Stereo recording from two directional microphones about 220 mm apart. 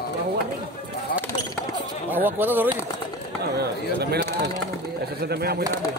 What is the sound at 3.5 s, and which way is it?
Speech, 45° right (ahead or behind).